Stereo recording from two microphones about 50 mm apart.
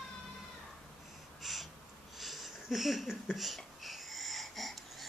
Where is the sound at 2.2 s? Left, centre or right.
Centre.